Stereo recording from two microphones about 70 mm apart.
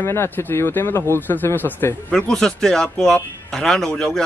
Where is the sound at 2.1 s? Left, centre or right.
Centre.